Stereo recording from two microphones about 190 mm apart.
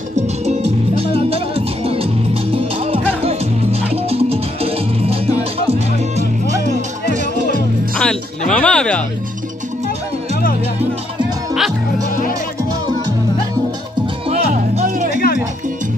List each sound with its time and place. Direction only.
0.1 s music: 35° right (ahead or behind)
8.0 s speech: 5° left (ahead or behind)
14.3 s music: 35° right (ahead or behind)
15.1 s music: 50° left (ahead or behind)